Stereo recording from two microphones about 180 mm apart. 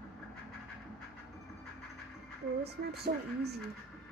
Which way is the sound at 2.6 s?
65° right (ahead or behind).